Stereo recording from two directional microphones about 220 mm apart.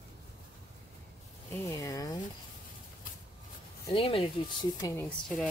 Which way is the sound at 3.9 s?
25° left (ahead or behind).